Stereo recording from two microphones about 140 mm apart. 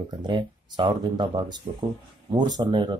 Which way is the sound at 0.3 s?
35° right (ahead or behind).